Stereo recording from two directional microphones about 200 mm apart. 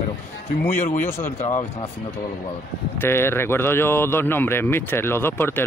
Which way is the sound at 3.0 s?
10° left (ahead or behind).